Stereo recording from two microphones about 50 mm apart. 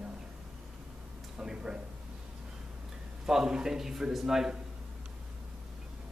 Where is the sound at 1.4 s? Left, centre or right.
Centre.